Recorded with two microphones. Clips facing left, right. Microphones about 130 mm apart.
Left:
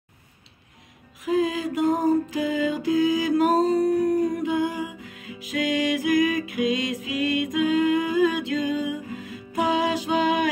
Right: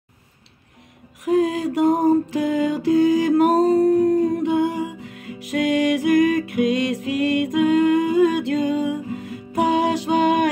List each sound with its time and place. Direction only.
1.2 s music: 55° right (ahead or behind)
4.0 s humming: 25° right (ahead or behind)
4.4 s music: 65° right (ahead or behind)